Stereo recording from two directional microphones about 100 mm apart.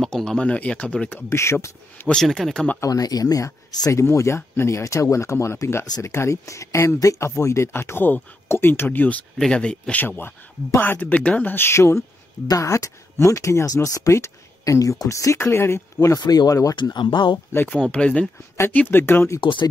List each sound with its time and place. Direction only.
0.0 s speech: 5° left (ahead or behind)
1.3 s speech: 25° left (ahead or behind)
2.0 s speech: 5° left (ahead or behind)
2.8 s speech: 40° left (ahead or behind)
5.9 s speech: 40° left (ahead or behind)
6.1 s speech: 30° left (ahead or behind)
16.8 s speech: 50° left (ahead or behind)
17.6 s speech: 10° left (ahead or behind)
19.4 s speech: 50° left (ahead or behind)